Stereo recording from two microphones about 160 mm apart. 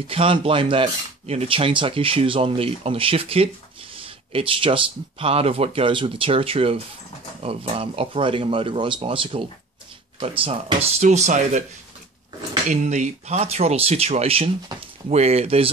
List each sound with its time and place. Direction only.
0.0 s speech: 35° right (ahead or behind)
12.6 s speech: 50° right (ahead or behind)